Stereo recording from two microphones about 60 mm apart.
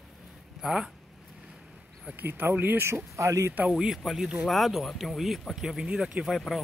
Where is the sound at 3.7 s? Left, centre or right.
Centre.